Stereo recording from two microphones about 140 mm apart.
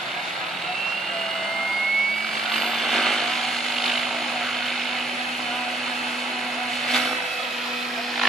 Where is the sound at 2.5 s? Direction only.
Centre (ahead or behind).